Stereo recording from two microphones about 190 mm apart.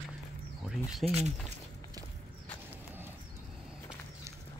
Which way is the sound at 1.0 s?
35° right (ahead or behind).